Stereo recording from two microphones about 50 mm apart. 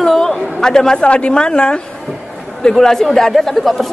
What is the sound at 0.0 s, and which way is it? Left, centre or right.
Chatter, centre.